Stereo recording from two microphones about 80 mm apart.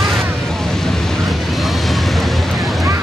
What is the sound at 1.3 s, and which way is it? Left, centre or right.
Vehicle, centre.